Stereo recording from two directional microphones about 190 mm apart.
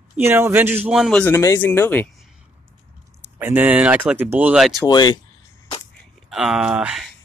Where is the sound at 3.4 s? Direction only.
10° right (ahead or behind).